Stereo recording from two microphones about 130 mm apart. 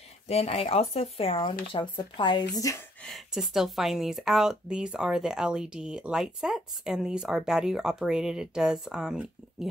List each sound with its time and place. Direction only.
0.3 s speech: 55° left (ahead or behind); by 2.8 s 25° left (ahead or behind)
3.0 s speech: centre (ahead or behind)